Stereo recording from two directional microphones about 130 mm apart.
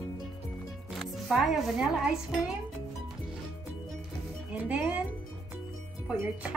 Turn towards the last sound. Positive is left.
turn(degrees=-10)  # may be behind; listen again after turning